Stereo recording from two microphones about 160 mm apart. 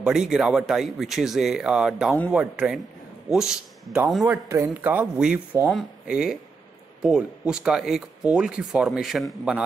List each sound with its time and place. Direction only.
0.0 s speech: 5° right (ahead or behind)
4.2 s a man's voice: 15° right (ahead or behind)